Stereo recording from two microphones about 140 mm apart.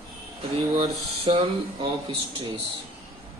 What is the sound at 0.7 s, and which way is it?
A man's voice, 40° right (ahead or behind).